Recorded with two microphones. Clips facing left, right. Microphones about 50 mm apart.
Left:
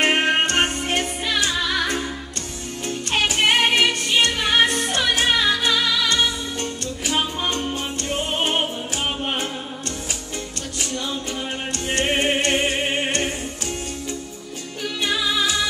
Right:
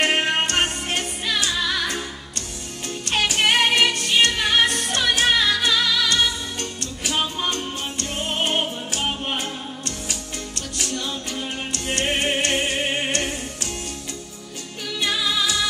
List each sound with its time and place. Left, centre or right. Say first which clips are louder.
0.0 s music: left 2 dB; left
3.1 s music: left 1 dB; left
10.8 s music: left 1 dB; left